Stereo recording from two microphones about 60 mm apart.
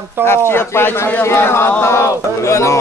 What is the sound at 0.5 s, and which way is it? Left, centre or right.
Speech, left.